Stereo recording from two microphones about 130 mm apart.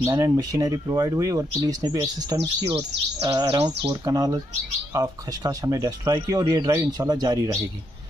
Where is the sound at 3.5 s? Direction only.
40° right (ahead or behind).